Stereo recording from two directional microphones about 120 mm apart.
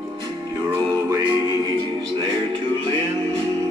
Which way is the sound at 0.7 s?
30° right (ahead or behind).